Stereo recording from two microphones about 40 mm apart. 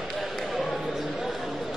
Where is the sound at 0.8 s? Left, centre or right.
Centre.